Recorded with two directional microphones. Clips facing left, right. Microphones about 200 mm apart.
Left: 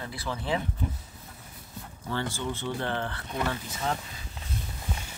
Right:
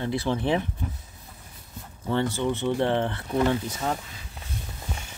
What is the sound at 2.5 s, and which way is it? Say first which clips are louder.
Speech: right 9 dB; 25° right (ahead or behind).